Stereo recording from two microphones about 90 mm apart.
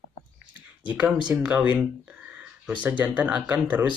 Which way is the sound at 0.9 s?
10° right (ahead or behind).